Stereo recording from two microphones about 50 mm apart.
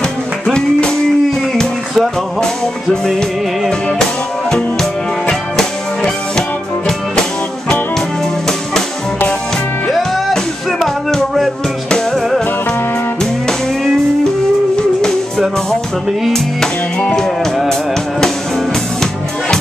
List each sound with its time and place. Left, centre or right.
0.5 s music: centre
4.5 s music: centre
9.8 s music: centre
15.0 s music: centre
17.1 s music: centre